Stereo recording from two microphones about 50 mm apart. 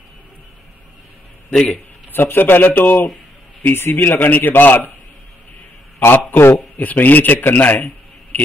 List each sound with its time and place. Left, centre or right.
1.5 s a man's voice: centre
2.1 s speech: left
6.0 s speech: left
6.8 s a man's voice: left